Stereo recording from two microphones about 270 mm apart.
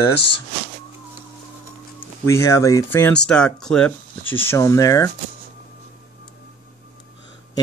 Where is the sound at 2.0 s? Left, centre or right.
Centre.